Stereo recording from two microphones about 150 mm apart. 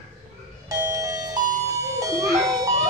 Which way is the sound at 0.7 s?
20° right (ahead or behind).